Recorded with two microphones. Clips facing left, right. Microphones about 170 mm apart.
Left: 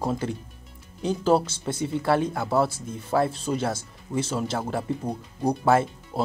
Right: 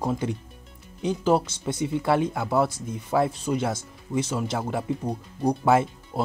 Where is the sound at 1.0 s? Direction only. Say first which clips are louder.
Left 1 dB; 15° right (ahead or behind).